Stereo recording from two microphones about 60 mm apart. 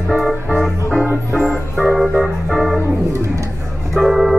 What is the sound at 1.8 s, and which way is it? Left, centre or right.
Organ, centre.